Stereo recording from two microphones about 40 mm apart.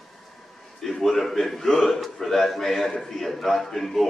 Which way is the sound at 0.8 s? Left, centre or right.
Centre.